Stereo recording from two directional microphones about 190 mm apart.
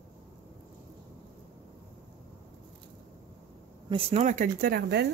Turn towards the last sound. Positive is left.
turn(degrees=-50)  # may be behind; listen again after turning